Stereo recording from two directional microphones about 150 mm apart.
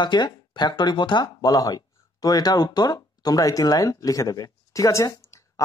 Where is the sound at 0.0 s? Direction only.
30° left (ahead or behind).